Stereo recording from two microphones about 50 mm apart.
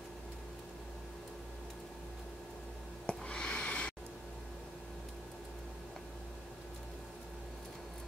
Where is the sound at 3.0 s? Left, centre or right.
Centre.